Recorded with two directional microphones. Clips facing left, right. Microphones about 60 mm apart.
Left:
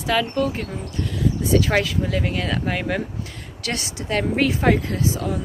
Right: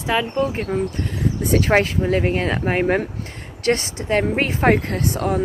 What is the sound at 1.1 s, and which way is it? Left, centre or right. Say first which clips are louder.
Speech: left 1 dB; right.